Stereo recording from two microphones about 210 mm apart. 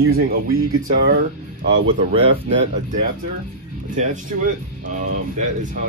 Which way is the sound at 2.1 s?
30° right (ahead or behind).